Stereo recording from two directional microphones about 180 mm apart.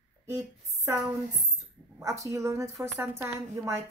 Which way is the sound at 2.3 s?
15° right (ahead or behind).